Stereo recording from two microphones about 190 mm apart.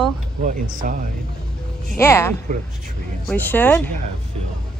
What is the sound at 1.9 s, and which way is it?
Speech, 15° left (ahead or behind).